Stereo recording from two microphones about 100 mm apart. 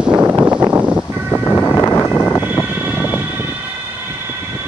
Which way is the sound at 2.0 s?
20° left (ahead or behind).